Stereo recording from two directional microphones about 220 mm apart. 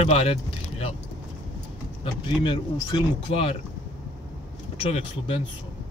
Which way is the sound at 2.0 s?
20° left (ahead or behind).